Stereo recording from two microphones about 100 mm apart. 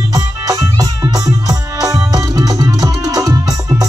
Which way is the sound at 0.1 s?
40° right (ahead or behind).